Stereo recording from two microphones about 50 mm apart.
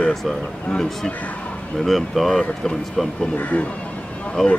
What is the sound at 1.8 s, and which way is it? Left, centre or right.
Speech, centre.